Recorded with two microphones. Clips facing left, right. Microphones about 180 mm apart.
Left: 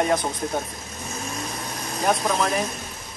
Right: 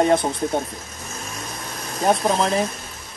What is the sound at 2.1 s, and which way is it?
Speech, 30° right (ahead or behind).